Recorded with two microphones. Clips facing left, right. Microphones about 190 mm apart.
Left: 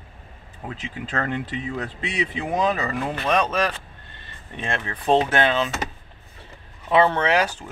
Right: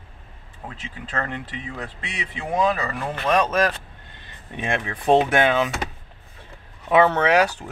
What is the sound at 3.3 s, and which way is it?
Speech, 5° right (ahead or behind).